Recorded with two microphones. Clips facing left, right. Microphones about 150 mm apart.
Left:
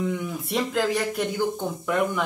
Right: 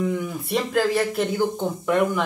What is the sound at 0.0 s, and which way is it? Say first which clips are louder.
Speech: right 3 dB; centre (ahead or behind).